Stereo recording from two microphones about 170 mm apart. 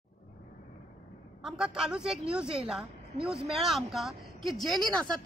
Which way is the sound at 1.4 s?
5° right (ahead or behind).